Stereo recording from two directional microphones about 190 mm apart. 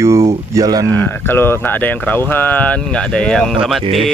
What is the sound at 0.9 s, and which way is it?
Speech, 10° left (ahead or behind).